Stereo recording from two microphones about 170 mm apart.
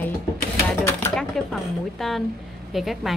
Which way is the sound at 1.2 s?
Centre (ahead or behind).